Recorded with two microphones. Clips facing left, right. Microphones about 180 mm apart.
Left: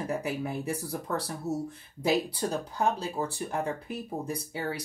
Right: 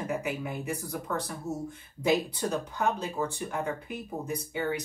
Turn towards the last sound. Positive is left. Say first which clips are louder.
# right 3 dB
turn(degrees=35)  # may be behind; listen again after turning